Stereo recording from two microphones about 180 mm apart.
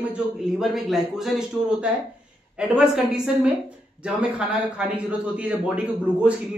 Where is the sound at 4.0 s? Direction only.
5° right (ahead or behind).